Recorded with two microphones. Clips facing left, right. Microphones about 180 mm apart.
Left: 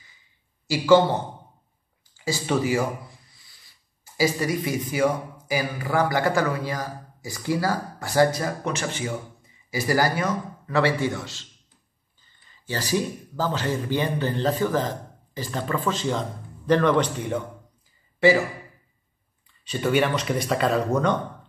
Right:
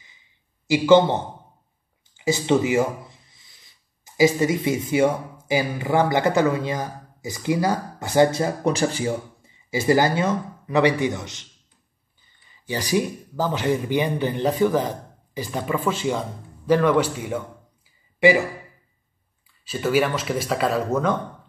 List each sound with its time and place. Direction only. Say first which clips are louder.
0.7 s a man's voice: right 2 dB; 20° right (ahead or behind)
2.1 s speech: right 5 dB; 20° right (ahead or behind)
19.6 s speech: right 1 dB; 5° right (ahead or behind)